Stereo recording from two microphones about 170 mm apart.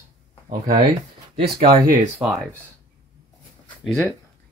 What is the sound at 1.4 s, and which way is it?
Speech, 65° right (ahead or behind).